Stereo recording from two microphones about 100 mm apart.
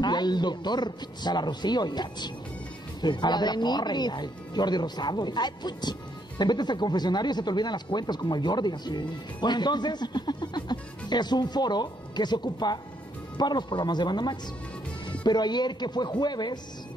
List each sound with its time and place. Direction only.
0.0 s speech: 45° left (ahead or behind)